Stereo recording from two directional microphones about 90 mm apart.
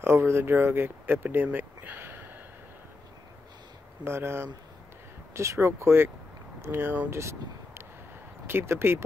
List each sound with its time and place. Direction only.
0.0 s speech: 30° right (ahead or behind)
4.0 s speech: 25° right (ahead or behind)